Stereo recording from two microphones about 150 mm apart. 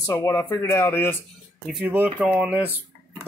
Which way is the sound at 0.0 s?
20° left (ahead or behind).